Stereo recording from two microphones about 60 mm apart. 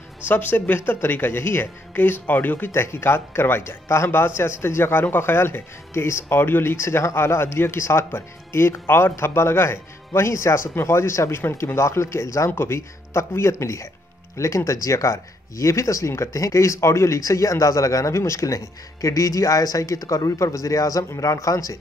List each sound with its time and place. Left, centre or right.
0.2 s speech: left
2.7 s speech: left
12.4 s speech: left